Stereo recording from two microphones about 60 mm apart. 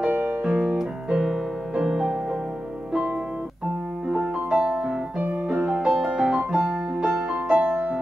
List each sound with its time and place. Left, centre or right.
0.1 s piano: right
0.4 s music: centre
4.1 s music: centre
5.9 s music: centre; by 8.0 s right